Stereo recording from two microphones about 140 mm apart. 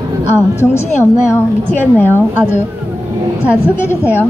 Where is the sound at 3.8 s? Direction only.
15° left (ahead or behind).